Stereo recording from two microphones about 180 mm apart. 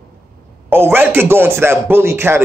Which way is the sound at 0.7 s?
10° right (ahead or behind).